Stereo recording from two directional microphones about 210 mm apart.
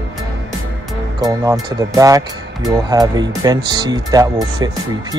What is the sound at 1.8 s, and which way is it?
Speech, 15° right (ahead or behind).